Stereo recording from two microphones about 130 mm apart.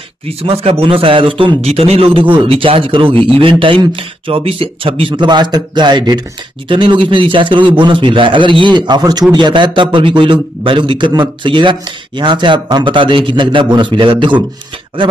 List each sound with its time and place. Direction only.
0.4 s a man's voice: 50° right (ahead or behind)